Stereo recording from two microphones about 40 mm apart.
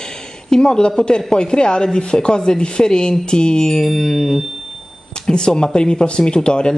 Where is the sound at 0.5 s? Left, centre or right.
Centre.